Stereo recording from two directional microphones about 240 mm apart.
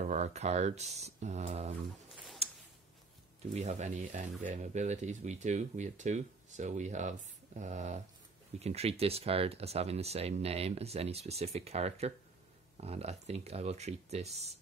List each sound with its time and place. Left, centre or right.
0.0 s speech: right
2.4 s a sound: right
3.5 s speech: right